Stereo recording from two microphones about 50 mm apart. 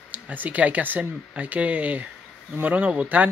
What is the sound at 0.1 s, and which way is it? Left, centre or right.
Speech, right.